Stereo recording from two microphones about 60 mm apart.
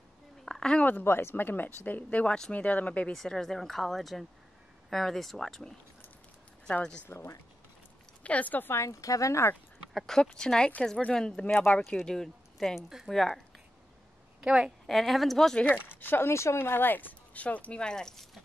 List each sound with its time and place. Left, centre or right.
0.5 s a sound: centre
1.0 s speech: left
3.1 s speech: centre
7.1 s speech: left
8.2 s speech: left
8.7 s speech: left
9.9 s speech: centre
14.4 s a woman's voice: centre
14.9 s speech: centre
15.6 s speech: left; by 18.4 s centre